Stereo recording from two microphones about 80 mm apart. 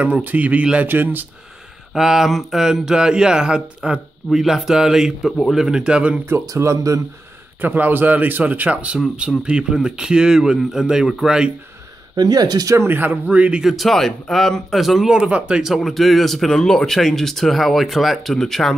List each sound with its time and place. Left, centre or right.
0.0 s speech: centre
2.0 s speech: centre
6.4 s speech: right
7.6 s speech: right
12.2 s speech: right
12.7 s speech: right; by 15.8 s centre
15.8 s speech: centre